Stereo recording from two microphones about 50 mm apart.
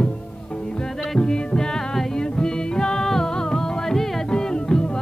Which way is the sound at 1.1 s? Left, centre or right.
Centre.